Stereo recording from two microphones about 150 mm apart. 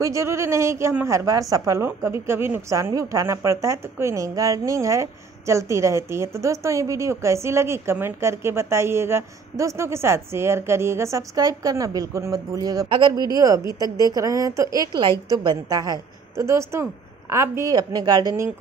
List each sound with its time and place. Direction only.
0.0 s a woman's voice: 20° right (ahead or behind)